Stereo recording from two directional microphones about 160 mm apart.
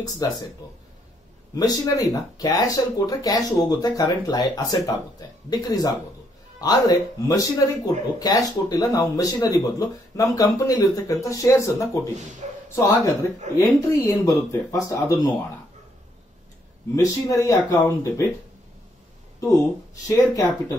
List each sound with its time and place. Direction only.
0.0 s speech: 25° left (ahead or behind)
1.5 s speech: 20° left (ahead or behind)
12.4 s a sound: 45° right (ahead or behind)
12.7 s speech: 20° left (ahead or behind)
16.9 s speech: 20° left (ahead or behind)
20.1 s speech: 20° left (ahead or behind)